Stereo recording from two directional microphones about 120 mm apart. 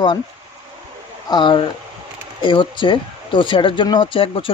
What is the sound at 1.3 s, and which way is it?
Speech, 40° left (ahead or behind).